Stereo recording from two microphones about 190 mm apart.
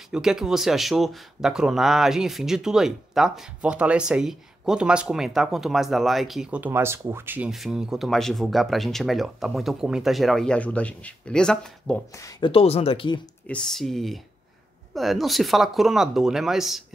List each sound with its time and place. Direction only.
0.1 s speech: 5° right (ahead or behind)
12.1 s speech: 15° left (ahead or behind)
13.5 s speech: 5° left (ahead or behind)